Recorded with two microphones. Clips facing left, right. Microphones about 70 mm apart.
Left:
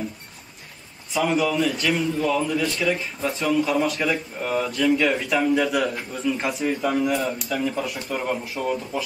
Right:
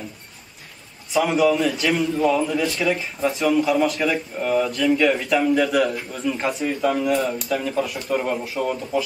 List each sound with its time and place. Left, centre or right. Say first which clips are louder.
1.1 s speech: right 3 dB; centre
2.1 s a man's voice: right 3 dB; centre